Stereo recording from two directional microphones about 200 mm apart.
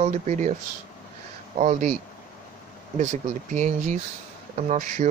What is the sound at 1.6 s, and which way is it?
Speech, 40° right (ahead or behind).